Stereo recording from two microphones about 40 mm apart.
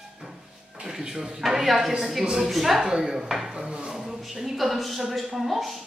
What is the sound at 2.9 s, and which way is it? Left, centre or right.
Speech, centre.